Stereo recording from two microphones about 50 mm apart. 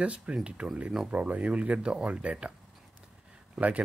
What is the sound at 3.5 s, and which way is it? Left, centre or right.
Speech, right.